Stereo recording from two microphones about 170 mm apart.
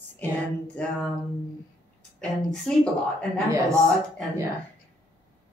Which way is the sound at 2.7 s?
5° left (ahead or behind).